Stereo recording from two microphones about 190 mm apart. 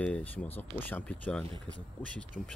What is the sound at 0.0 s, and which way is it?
Speech, 5° left (ahead or behind).